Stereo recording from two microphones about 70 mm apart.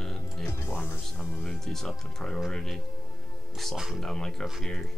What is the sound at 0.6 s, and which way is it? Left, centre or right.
Music, left.